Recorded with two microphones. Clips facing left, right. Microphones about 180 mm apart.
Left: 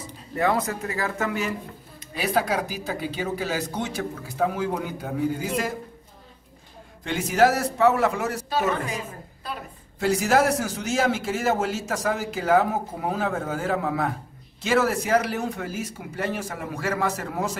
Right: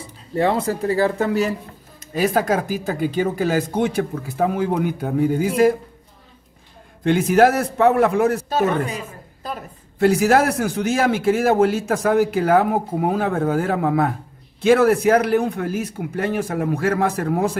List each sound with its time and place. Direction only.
0.4 s speech: 30° right (ahead or behind)
2.1 s speech: 45° right (ahead or behind)
7.1 s a man's voice: 55° right (ahead or behind)